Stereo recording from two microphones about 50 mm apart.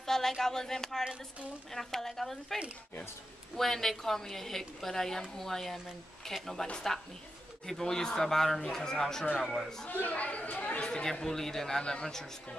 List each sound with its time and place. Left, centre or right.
0.0 s a man's voice: centre
9.8 s speech: left
10.8 s speech: centre